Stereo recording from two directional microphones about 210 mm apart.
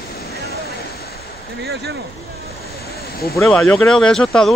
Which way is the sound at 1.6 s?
50° right (ahead or behind).